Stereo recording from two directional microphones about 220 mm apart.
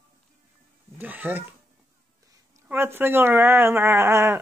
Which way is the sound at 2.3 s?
10° right (ahead or behind).